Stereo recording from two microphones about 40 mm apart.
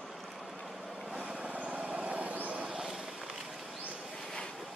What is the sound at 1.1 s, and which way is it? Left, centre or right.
Vehicle, centre.